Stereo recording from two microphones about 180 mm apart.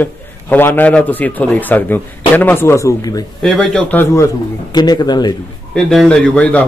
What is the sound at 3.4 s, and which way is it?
A man's voice, 5° left (ahead or behind).